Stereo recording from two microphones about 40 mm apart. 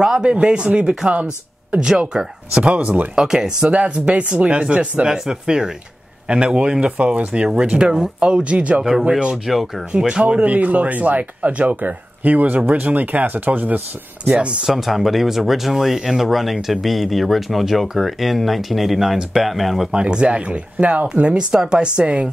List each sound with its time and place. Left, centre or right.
0.0 s speech: right
2.7 s speech: right
3.2 s speech: centre
3.6 s speech: right
5.3 s speech: centre; by 8.8 s right
9.5 s speech: centre
9.9 s speech: right
10.4 s speech: right
11.8 s speech: right
14.7 s speech: centre
19.9 s speech: right